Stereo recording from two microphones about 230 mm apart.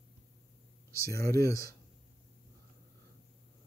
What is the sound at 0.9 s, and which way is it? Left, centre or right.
Speech, centre.